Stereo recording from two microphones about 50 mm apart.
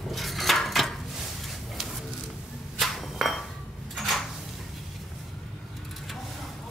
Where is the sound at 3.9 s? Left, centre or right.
Centre.